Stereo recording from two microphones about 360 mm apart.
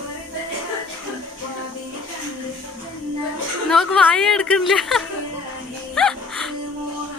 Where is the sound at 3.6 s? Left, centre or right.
Centre.